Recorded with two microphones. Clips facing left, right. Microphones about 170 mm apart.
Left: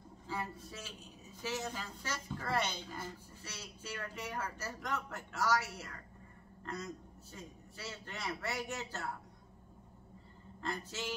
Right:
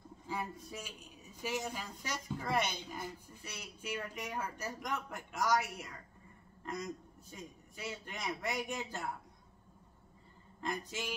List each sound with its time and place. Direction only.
0.3 s a man's voice: 15° right (ahead or behind)
10.6 s a woman's voice: 15° right (ahead or behind)